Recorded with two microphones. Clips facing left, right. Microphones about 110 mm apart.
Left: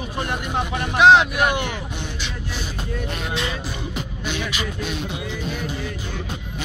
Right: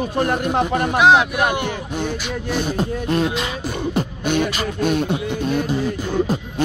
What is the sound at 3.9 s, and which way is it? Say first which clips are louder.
Beatboxing: right 11 dB; 50° right (ahead or behind).